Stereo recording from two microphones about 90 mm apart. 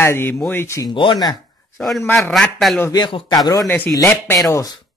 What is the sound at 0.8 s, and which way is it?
Speech, 65° left (ahead or behind).